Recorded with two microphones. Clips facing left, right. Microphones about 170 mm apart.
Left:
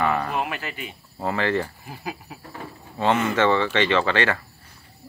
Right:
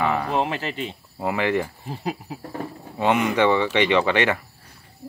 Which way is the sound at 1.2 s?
15° right (ahead or behind).